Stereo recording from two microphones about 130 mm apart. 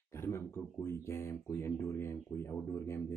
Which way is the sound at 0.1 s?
20° left (ahead or behind).